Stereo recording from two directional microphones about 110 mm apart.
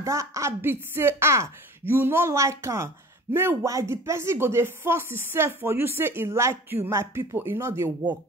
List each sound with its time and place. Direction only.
0.0 s speech: 25° right (ahead or behind)